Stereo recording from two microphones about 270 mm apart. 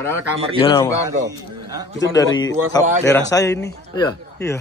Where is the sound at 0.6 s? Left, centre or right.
Centre.